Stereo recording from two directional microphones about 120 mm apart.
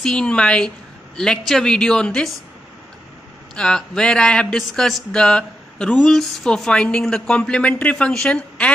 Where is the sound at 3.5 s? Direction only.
5° left (ahead or behind).